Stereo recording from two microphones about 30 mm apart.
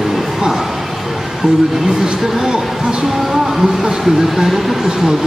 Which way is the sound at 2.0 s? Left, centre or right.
Centre.